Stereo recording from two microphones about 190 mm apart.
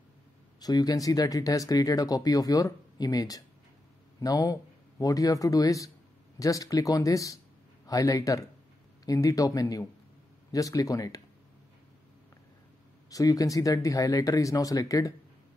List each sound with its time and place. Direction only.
0.6 s speech: 20° left (ahead or behind)
13.1 s speech: 20° left (ahead or behind)